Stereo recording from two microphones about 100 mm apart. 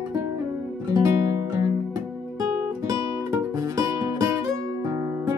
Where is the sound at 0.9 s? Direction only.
35° right (ahead or behind).